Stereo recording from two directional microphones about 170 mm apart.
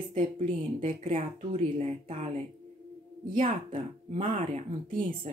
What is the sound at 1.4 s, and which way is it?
Speech, 35° right (ahead or behind).